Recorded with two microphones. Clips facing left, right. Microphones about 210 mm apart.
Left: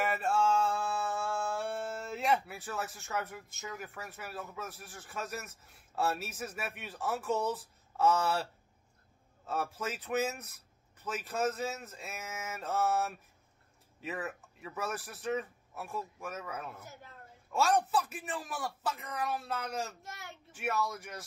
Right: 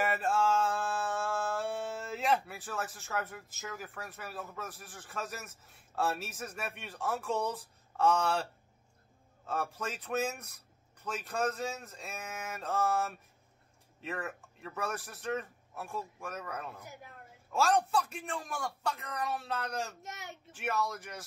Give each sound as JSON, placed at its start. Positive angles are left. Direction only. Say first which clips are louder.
{"t": 0.0, "sound": "music", "louder": "even", "side_deg": 0}
{"t": 9.5, "sound": "speech", "louder": "even", "side_deg": 0}
{"t": 20.0, "sound": "a child's voice", "louder": "right 2 dB", "side_deg": -20}
{"t": 20.5, "sound": "speech", "louder": "even", "side_deg": 0}